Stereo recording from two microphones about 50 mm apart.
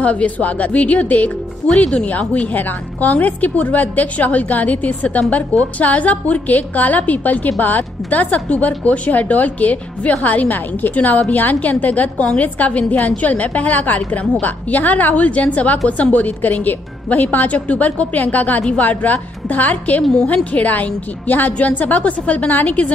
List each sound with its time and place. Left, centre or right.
0.0 s a woman's voice: left
18.6 s a woman's voice: left
18.9 s a woman's voice: left